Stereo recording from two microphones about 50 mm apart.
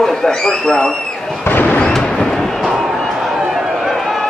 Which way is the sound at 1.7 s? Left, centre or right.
Centre.